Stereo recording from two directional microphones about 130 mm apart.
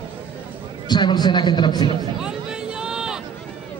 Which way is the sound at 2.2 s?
5° right (ahead or behind).